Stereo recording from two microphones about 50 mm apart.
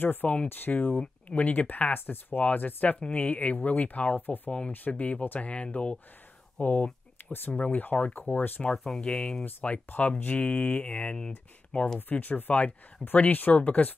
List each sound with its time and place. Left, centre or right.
0.0 s speech: left
2.0 s speech: left
7.2 s a sound: left
7.7 s speech: left
8.8 s speech: centre
9.4 s speech: left
11.1 s speech: centre
12.1 s speech: left